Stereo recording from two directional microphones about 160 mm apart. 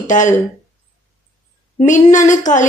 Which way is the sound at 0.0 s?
50° left (ahead or behind).